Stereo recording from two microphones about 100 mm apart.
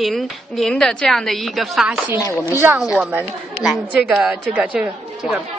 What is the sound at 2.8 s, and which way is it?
A woman's voice, 10° right (ahead or behind).